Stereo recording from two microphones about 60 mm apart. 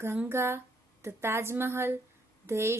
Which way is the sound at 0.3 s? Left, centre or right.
Right.